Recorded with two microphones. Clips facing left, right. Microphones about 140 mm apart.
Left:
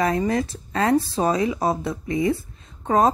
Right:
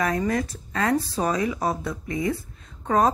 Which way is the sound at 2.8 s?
25° left (ahead or behind).